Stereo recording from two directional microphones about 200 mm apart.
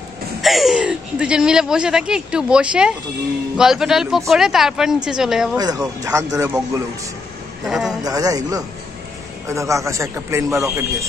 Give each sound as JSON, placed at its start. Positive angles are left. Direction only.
{"t": 0.4, "sound": "speech", "side_deg": 0}
{"t": 5.6, "sound": "a man's voice", "side_deg": -20}
{"t": 7.6, "sound": "speech", "side_deg": 0}
{"t": 8.0, "sound": "a man's voice", "side_deg": -20}